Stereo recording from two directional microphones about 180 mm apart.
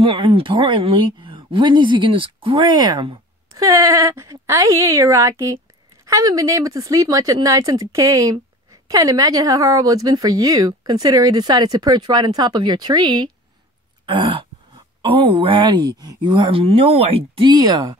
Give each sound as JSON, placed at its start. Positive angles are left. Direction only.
{"t": 0.0, "sound": "a woman's voice", "side_deg": -30}